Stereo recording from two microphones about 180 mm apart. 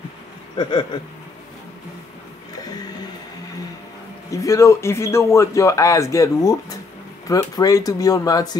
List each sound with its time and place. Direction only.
0.6 s speech: 25° left (ahead or behind)
4.3 s speech: 15° left (ahead or behind)